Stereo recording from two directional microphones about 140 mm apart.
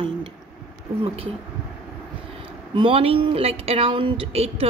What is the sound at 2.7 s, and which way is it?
Speech, 40° right (ahead or behind).